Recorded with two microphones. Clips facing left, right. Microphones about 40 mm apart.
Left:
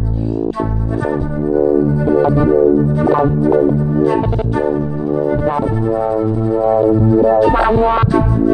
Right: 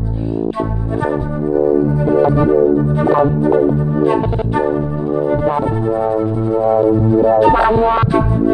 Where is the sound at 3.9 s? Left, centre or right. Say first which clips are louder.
Even; right.